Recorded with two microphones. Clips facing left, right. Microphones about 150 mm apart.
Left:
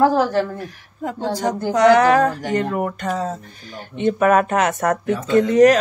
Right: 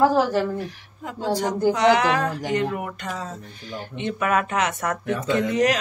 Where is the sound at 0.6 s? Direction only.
45° left (ahead or behind).